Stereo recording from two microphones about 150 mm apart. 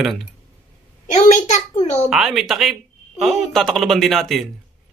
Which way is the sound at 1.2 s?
50° left (ahead or behind).